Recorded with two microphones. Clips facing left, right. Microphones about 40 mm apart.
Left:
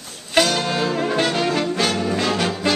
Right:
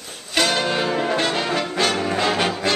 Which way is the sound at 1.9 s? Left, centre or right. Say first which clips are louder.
Even; right.